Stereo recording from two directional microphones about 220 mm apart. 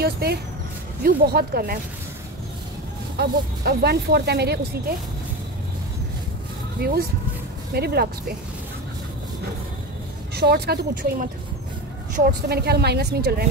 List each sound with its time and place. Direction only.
0.0 s a sound: 45° right (ahead or behind)
1.0 s speech: 45° right (ahead or behind)
3.2 s speech: 45° right (ahead or behind)
6.8 s speech: 45° right (ahead or behind)
10.3 s speech: 45° right (ahead or behind)
12.4 s speech: 45° right (ahead or behind)